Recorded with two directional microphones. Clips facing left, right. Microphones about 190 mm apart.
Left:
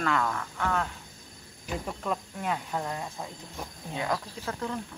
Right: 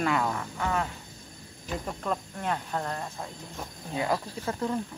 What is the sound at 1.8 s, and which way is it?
Speech, centre (ahead or behind).